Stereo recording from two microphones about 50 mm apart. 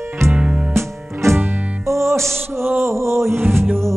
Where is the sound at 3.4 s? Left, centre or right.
Right.